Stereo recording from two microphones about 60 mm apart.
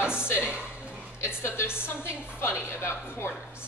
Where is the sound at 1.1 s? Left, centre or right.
Left.